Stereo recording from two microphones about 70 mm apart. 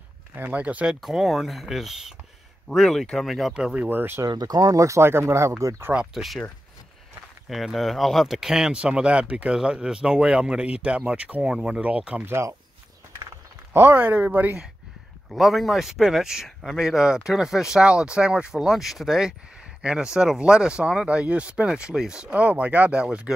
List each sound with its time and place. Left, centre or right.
0.3 s speech: right
1.0 s speech: centre
3.7 s speech: right
4.3 s speech: right
4.7 s speech: right
5.9 s speech: centre
7.4 s speech: centre
12.3 s speech: right
13.7 s speech: right
15.2 s speech: centre